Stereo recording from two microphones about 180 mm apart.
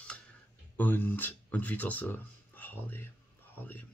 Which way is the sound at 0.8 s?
10° left (ahead or behind).